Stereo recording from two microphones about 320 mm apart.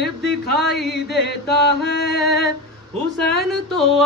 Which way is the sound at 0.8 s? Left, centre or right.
Left.